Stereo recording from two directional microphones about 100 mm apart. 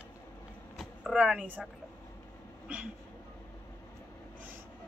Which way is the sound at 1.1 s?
15° right (ahead or behind).